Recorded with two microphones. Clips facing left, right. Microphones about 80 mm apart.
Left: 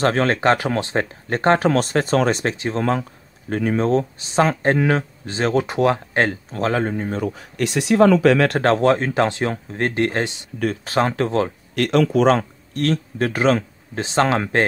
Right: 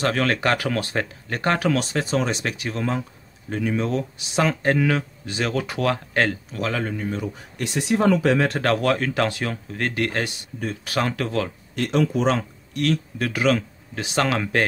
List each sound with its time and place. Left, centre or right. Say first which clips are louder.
0.0 s speech: left 4 dB; left
2.4 s speech: left 5 dB; left
3.4 s speech: left 5 dB; left
7.3 s speech: left 5 dB; left
8.5 s speech: left 5 dB; left
11.7 s speech: left 4 dB; left
12.3 s speech: left 5 dB; left